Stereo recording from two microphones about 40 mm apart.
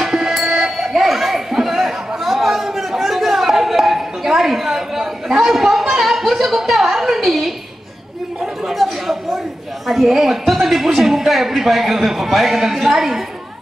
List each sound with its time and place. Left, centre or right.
0.0 s music: centre
0.3 s a sound: centre
8.6 s chatter: centre
9.8 s speech: centre